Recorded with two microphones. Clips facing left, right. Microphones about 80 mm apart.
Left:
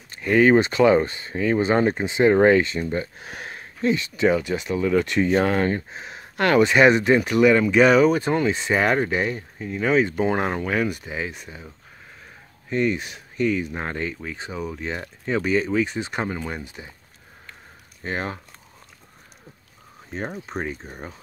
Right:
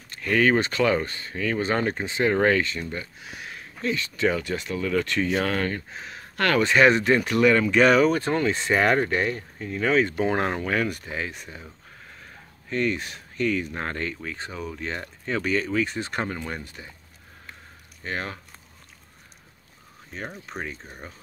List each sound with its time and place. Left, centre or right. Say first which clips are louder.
0.1 s speech: left 5 dB; centre
3.2 s a sound: left 3 dB; left
3.9 s speech: left 4 dB; centre
12.6 s speech: left 3 dB; centre
18.0 s speech: left 3 dB; left
20.2 s speech: left 5 dB; left